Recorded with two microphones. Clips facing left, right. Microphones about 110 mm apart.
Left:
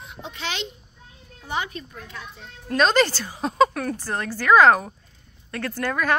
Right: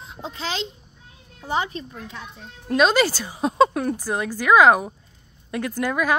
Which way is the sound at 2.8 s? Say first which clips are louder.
Right 1 dB; 5° right (ahead or behind).